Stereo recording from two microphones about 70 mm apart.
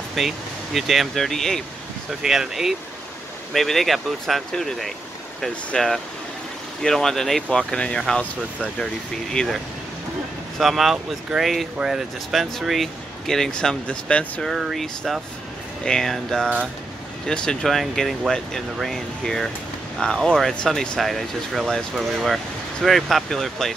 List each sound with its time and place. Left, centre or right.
0.2 s speech: centre
2.2 s speech: centre
9.3 s speech: centre
10.6 s speech: centre
14.5 s speech: centre